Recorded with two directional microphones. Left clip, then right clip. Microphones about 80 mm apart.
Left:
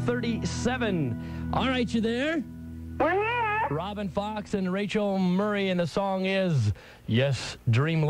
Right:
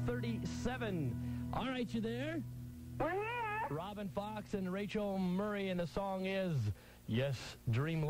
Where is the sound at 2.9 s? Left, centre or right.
Right.